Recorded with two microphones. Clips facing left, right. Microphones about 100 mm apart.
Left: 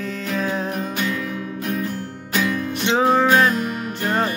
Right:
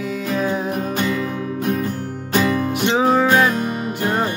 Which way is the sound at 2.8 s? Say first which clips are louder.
Even; 5° right (ahead or behind).